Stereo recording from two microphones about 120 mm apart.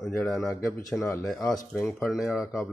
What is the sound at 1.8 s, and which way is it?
Speech, centre (ahead or behind).